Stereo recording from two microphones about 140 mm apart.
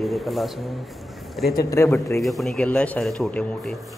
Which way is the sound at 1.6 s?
20° left (ahead or behind).